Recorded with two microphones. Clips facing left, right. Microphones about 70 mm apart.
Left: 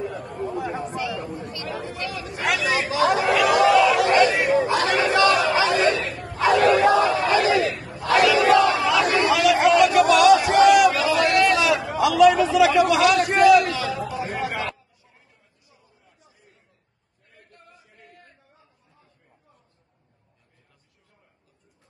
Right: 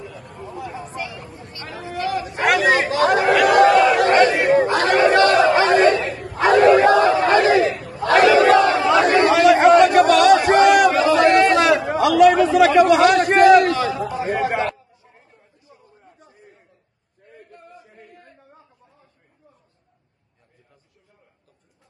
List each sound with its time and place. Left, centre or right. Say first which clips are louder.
2.0 s chatter: right 7 dB; right
6.1 s a sound: right 4 dB; right
8.0 s chatter: right 5 dB; right
14.1 s chatter: right 6 dB; right